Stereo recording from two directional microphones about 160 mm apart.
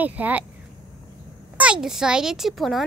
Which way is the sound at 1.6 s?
5° right (ahead or behind).